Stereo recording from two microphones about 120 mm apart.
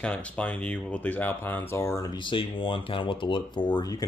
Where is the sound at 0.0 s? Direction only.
10° left (ahead or behind).